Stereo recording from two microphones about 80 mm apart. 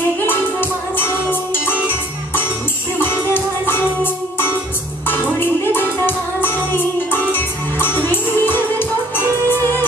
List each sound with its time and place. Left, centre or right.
0.2 s music: left
3.0 s music: left